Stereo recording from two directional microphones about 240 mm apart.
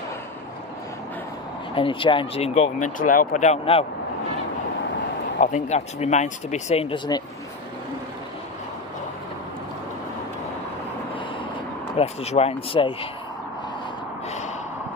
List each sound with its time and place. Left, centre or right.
1.8 s speech: left
5.4 s speech: left
12.0 s speech: left